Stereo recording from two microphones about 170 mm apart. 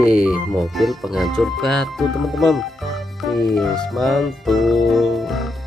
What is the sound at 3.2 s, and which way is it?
Music, centre (ahead or behind).